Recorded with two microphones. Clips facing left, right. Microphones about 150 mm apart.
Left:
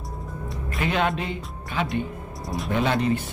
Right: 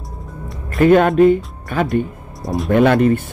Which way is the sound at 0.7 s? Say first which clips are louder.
Right 14 dB; 50° right (ahead or behind).